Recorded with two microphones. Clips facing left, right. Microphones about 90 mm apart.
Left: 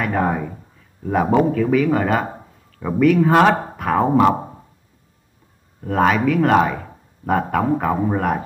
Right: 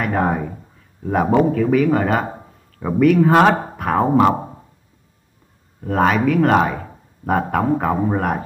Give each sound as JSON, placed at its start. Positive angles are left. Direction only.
{"t": 0.0, "sound": "a man's voice", "side_deg": -10}
{"t": 5.9, "sound": "speech", "side_deg": -5}